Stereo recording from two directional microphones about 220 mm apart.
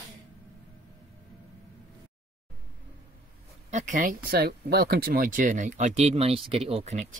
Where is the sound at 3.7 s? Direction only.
35° right (ahead or behind).